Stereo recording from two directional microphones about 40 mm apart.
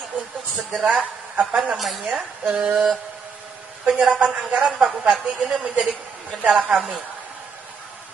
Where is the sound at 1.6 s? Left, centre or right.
Centre.